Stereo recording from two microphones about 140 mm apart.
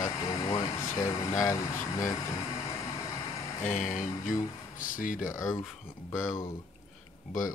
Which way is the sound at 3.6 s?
65° left (ahead or behind).